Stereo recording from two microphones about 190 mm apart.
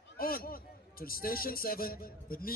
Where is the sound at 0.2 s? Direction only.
50° left (ahead or behind).